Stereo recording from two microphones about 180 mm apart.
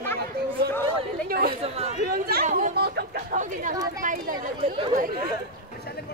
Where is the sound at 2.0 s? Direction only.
55° right (ahead or behind).